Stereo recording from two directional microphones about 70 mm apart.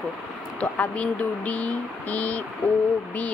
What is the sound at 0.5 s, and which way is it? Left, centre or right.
A woman's voice, centre.